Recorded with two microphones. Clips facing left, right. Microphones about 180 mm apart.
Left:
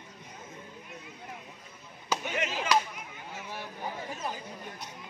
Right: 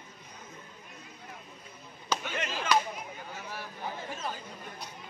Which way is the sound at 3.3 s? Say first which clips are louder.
Left 3 dB; 20° left (ahead or behind).